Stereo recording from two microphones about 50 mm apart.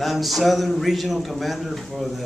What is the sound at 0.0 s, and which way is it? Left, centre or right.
Speech, centre.